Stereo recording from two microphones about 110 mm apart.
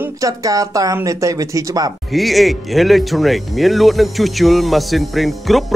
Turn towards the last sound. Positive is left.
turn(degrees=0)  # may be behind; listen again after turning